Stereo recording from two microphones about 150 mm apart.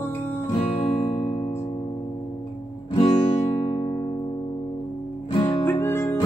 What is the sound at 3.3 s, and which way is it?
Music, 45° left (ahead or behind).